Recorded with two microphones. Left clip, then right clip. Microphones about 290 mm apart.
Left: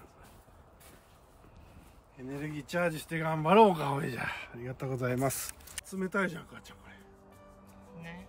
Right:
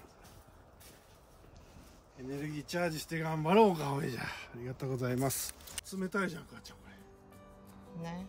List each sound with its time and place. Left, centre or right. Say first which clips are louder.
2.2 s speech: left 1 dB; centre